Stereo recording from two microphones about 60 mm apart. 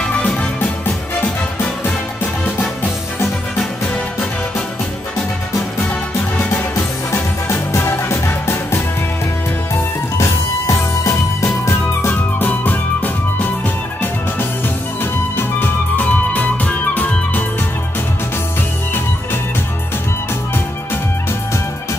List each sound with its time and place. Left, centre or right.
0.0 s music: centre
0.6 s music: left
7.4 s music: left
10.1 s music: left
12.1 s music: left
15.0 s music: left